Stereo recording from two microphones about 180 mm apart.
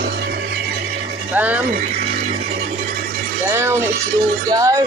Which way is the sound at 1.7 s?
45° right (ahead or behind).